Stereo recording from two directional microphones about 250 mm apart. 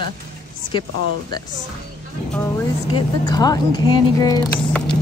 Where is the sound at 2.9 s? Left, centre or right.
Centre.